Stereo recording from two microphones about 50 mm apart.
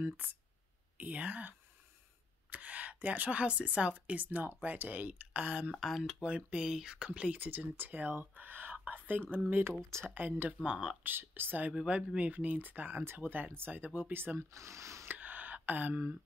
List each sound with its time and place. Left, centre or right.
0.2 s speech: right
2.5 s speech: right
5.8 s speech: centre
6.2 s speech: right
7.3 s speech: right
10.6 s speech: centre
11.1 s speech: right
11.9 s speech: right
12.3 s speech: right
13.8 s speech: right
14.1 s speech: right
14.5 s speech: right
15.0 s a sound: right